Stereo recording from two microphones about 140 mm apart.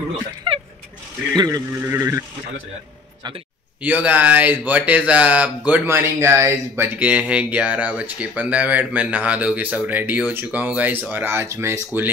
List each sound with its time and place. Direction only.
0.5 s vehicle: 35° right (ahead or behind)
1.3 s speech: 30° right (ahead or behind)
1.7 s speech: 15° right (ahead or behind)
3.8 s speech: 10° right (ahead or behind)